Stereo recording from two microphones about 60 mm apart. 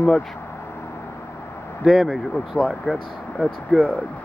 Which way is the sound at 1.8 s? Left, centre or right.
Centre.